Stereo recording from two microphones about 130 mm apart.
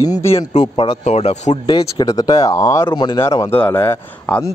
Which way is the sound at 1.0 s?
60° left (ahead or behind).